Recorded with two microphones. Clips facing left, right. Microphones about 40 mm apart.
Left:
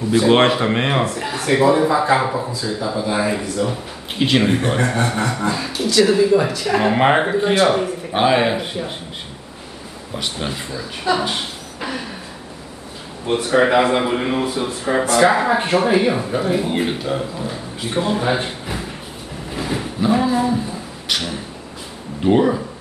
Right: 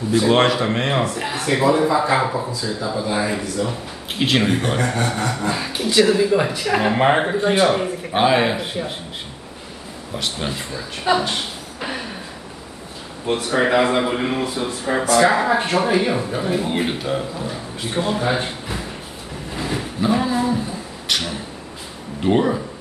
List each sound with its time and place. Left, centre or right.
0.3 s speech: left
1.1 s speech: centre
1.4 s a man's voice: centre
5.7 s speech: right
6.0 s a man's voice: centre
6.3 s speech: centre
7.0 s a man's voice: centre
10.1 s a man's voice: centre
13.4 s a man's voice: centre
19.5 s a sound: centre
22.2 s a man's voice: centre